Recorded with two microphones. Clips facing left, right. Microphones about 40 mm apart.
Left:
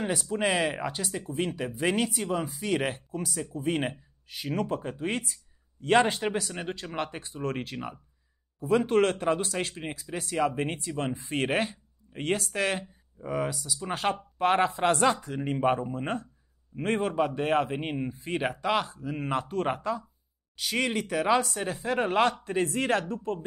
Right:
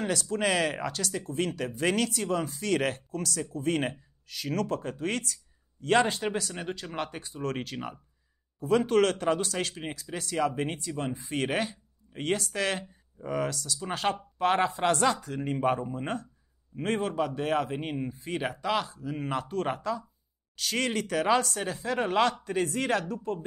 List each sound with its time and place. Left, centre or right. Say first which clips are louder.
0.0 s speech: even; centre
10.1 s speech: left 2 dB; centre
10.4 s speech: left 1 dB; left
21.6 s speech: left 1 dB; left